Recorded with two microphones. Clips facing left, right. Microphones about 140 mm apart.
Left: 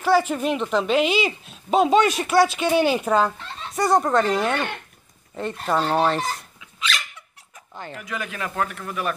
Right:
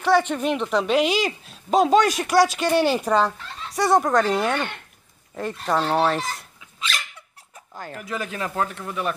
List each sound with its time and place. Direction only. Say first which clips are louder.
0.0 s speech: even; 5° left (ahead or behind)
7.7 s speech: even; centre (ahead or behind)
8.0 s speech: right 2 dB; 35° right (ahead or behind)